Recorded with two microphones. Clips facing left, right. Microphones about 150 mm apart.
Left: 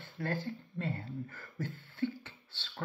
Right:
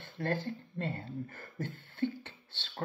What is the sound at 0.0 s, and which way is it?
Speech, 25° right (ahead or behind).